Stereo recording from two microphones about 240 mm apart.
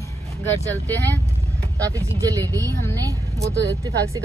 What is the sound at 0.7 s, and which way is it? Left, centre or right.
Speech, centre.